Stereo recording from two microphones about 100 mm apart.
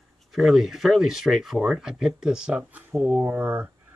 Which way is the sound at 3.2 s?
20° right (ahead or behind).